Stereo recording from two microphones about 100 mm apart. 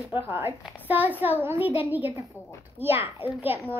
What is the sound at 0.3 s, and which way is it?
A woman's voice, 20° right (ahead or behind).